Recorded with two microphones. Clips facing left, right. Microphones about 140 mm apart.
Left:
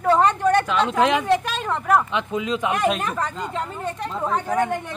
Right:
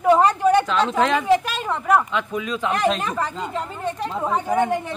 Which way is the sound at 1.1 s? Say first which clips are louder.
Right 2 dB; 5° right (ahead or behind).